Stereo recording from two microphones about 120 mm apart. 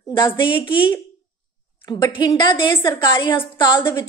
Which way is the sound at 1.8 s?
35° left (ahead or behind).